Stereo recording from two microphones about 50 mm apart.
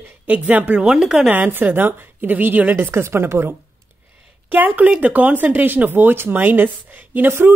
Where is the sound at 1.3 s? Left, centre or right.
Right.